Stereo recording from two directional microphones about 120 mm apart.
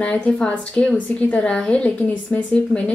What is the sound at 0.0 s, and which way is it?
A woman's voice, 10° left (ahead or behind).